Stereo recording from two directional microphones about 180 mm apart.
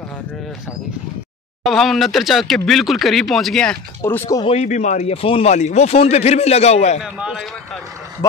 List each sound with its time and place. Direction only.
1.7 s speech: centre (ahead or behind)
4.0 s speech: 10° left (ahead or behind)
4.4 s speech: 35° left (ahead or behind)
7.2 s speech: 5° right (ahead or behind)
8.2 s speech: 20° left (ahead or behind)